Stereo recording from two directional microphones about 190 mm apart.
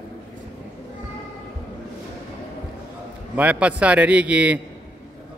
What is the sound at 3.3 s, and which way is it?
A man's voice, 5° right (ahead or behind).